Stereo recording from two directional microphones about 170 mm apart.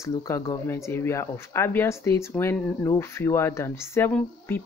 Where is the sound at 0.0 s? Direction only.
15° left (ahead or behind).